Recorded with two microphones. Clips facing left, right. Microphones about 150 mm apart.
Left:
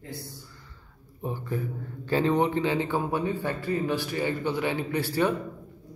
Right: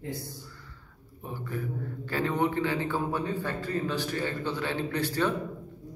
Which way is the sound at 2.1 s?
25° left (ahead or behind).